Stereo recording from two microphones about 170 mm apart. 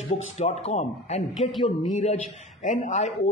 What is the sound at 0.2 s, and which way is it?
Speech, 40° left (ahead or behind).